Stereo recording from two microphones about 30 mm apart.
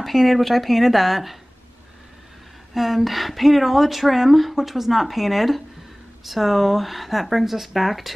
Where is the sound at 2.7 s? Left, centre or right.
Centre.